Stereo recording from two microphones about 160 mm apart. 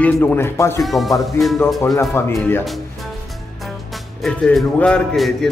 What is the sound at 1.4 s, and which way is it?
Speech, 15° left (ahead or behind).